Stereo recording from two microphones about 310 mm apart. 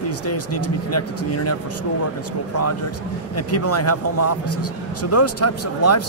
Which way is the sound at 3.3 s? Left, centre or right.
Left.